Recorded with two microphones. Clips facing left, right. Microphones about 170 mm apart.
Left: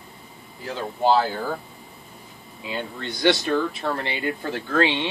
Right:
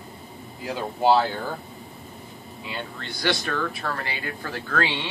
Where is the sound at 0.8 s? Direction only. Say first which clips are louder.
Even; 5° right (ahead or behind).